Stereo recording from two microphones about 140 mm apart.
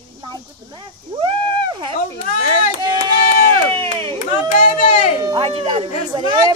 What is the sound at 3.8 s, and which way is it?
Speech, 40° right (ahead or behind).